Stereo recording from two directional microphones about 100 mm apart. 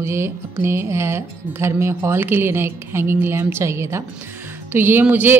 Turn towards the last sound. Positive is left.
turn(degrees=-15)  # may be behind; listen again after turning